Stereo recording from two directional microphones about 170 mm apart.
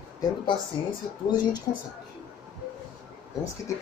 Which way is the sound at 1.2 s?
25° left (ahead or behind).